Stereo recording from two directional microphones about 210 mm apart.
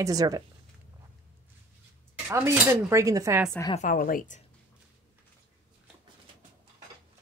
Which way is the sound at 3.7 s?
40° left (ahead or behind).